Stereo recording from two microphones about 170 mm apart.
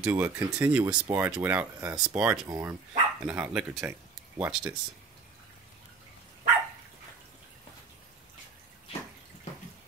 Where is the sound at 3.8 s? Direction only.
10° right (ahead or behind).